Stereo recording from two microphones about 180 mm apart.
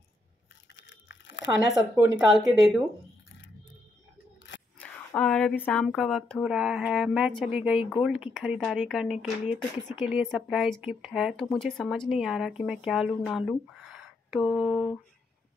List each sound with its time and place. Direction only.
0.7 s crunch: 80° left
1.7 s speech: centre (ahead or behind)
4.7 s speech: 5° left (ahead or behind)